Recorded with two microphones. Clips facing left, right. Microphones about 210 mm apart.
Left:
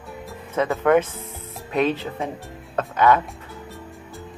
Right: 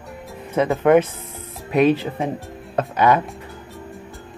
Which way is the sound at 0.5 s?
15° right (ahead or behind).